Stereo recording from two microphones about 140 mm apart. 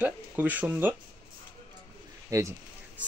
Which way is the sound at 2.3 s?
25° right (ahead or behind).